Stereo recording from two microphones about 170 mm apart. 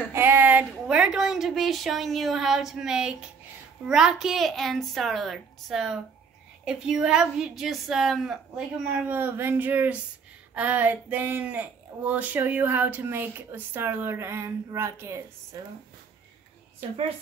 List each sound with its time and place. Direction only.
0.1 s a sound: 10° right (ahead or behind)
3.8 s a woman's voice: 5° right (ahead or behind)
9.1 s speech: 10° right (ahead or behind)